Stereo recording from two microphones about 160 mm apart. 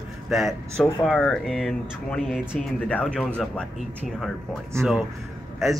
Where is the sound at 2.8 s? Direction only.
5° left (ahead or behind).